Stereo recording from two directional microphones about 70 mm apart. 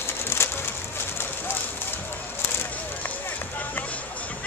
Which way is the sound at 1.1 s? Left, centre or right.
Left.